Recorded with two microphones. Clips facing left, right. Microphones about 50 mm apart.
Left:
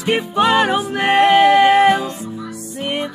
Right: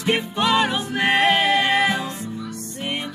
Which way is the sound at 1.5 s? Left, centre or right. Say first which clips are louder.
Left 8 dB; left.